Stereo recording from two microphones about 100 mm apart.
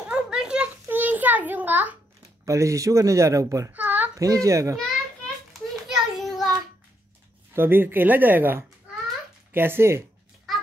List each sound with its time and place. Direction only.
0.0 s a sound: 10° right (ahead or behind)
2.4 s speech: 30° right (ahead or behind)
3.7 s a sound: 15° right (ahead or behind)
4.1 s speech: 35° right (ahead or behind)
5.5 s children playing: centre (ahead or behind)
7.5 s speech: 20° right (ahead or behind)